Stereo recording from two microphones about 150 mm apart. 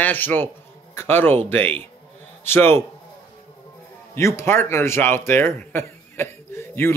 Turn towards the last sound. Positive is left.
turn(degrees=15)  # may be behind; listen again after turning